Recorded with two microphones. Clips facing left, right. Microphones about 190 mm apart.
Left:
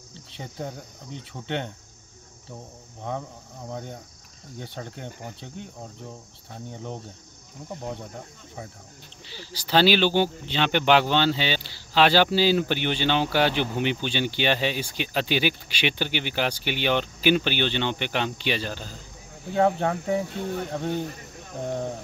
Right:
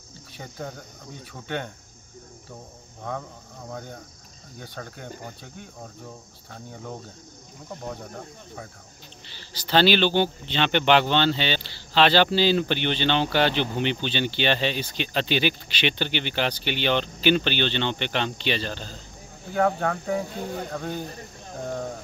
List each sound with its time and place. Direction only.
0.4 s cricket: 25° left (ahead or behind)
3.0 s speech: 20° left (ahead or behind)
3.7 s cricket: 20° left (ahead or behind)
9.2 s speech: 10° left (ahead or behind)
19.5 s cricket: 20° left (ahead or behind)